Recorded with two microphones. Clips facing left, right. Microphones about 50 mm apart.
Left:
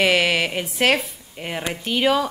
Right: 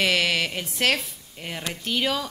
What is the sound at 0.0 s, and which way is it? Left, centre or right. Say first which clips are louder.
Speech: left 4 dB; centre.